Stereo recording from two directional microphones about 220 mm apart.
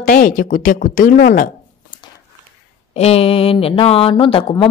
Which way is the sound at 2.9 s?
25° left (ahead or behind).